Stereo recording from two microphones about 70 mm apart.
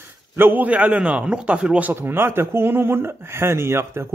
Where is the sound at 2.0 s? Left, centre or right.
Right.